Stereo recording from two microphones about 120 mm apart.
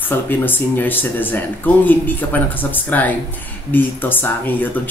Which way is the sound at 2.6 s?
15° left (ahead or behind).